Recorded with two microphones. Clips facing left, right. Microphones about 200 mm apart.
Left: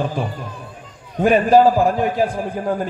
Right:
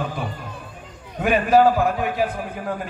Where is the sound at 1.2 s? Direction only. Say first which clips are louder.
Left 4 dB; 30° left (ahead or behind).